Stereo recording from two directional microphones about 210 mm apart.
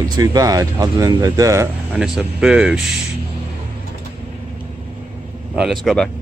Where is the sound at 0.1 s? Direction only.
15° right (ahead or behind).